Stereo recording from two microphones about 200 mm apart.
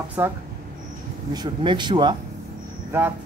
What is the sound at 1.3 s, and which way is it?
Speech, 20° right (ahead or behind).